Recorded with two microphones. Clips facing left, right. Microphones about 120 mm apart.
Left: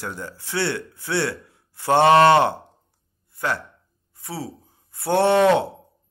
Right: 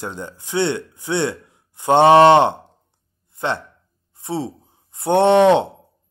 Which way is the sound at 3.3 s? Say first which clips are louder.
Right 3 dB; 25° right (ahead or behind).